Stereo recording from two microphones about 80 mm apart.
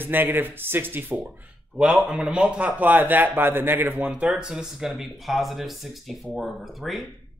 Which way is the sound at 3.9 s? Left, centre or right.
Centre.